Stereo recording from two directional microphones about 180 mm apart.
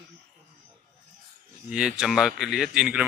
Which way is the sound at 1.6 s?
5° right (ahead or behind).